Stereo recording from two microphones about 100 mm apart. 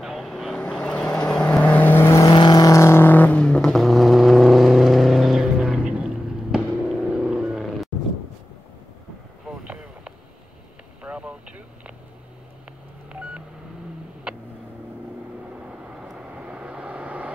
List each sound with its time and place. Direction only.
0.0 s vehicle: centre (ahead or behind); by 2.3 s 30° left (ahead or behind)
2.3 s vehicle: 50° left (ahead or behind)
2.6 s vehicle: 30° left (ahead or behind); by 6.0 s 5° right (ahead or behind)
6.5 s a sound: 10° right (ahead or behind)
11.0 s vehicle: 10° right (ahead or behind)
16.0 s vehicle: 10° right (ahead or behind)